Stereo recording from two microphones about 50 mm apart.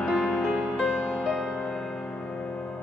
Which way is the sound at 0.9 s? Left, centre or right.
Left.